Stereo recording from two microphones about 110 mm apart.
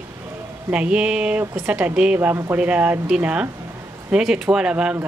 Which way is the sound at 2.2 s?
20° right (ahead or behind).